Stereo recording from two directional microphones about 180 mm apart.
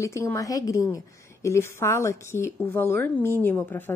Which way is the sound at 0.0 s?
15° left (ahead or behind).